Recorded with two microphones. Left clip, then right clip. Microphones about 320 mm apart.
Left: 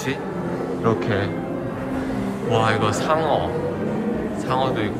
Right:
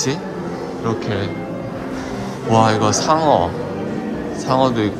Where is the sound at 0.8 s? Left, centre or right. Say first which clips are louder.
Left 1 dB; centre.